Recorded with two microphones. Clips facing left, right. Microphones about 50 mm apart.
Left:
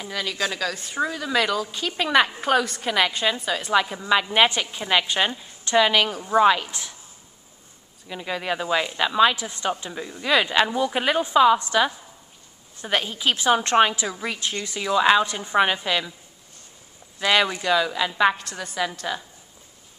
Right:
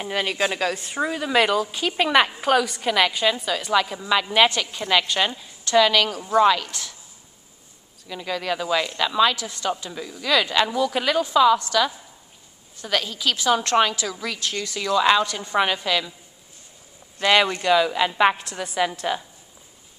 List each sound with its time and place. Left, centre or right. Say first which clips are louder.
0.0 s a woman's voice: right 3 dB; right
0.9 s a woman's voice: right 2 dB; centre
2.6 s a woman's voice: right 2 dB; centre
8.1 s a woman's voice: right 1 dB; centre
17.2 s a woman's voice: right 2 dB; centre